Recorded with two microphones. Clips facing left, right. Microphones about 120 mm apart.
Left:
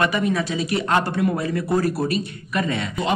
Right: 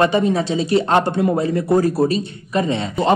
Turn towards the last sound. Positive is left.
turn(degrees=-25)  # may be behind; listen again after turning